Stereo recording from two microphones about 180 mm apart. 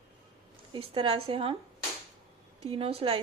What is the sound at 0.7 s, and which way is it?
Speech, 30° right (ahead or behind).